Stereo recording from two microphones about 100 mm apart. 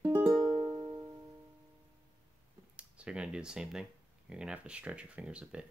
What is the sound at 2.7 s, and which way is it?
Speech, 10° right (ahead or behind).